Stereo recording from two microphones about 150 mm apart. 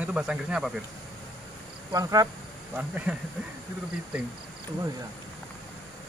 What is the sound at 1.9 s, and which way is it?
Speech, 25° right (ahead or behind).